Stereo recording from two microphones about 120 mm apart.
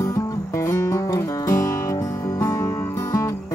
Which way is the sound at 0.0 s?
25° left (ahead or behind).